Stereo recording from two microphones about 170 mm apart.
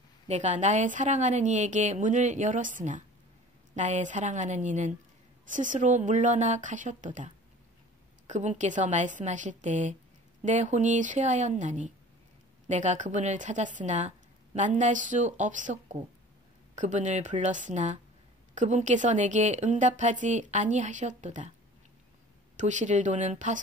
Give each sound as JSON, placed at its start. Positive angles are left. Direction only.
{"t": 0.3, "sound": "a woman's voice", "side_deg": -45}
{"t": 8.3, "sound": "a woman's voice", "side_deg": -45}
{"t": 22.6, "sound": "a woman's voice", "side_deg": -45}